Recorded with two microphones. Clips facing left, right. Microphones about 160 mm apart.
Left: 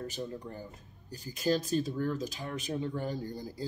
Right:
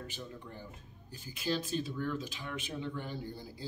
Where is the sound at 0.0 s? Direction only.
40° left (ahead or behind).